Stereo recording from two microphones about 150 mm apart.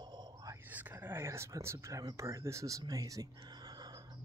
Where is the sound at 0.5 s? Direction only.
10° right (ahead or behind).